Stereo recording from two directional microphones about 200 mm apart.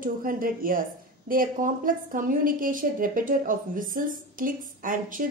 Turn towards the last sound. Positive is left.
turn(degrees=-45)  # may be behind; listen again after turning